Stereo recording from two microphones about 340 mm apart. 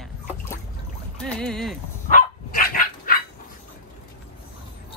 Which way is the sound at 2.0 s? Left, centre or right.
Left.